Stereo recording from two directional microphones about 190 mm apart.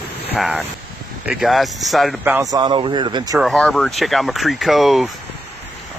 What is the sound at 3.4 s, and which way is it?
Speech, centre (ahead or behind).